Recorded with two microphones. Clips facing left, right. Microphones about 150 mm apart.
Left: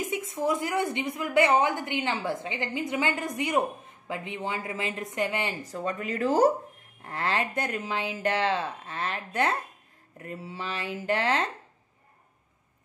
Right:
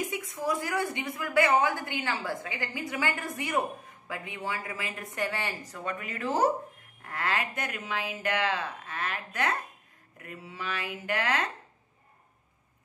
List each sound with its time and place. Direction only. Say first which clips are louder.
0.0 s a woman's voice: left 3 dB; 25° left (ahead or behind)